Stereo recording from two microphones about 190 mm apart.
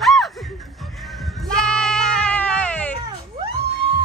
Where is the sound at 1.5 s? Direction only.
5° left (ahead or behind).